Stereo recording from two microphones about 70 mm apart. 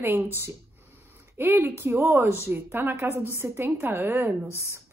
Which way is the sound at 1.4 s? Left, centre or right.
Right.